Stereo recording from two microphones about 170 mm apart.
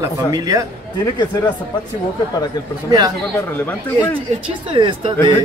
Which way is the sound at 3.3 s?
10° left (ahead or behind).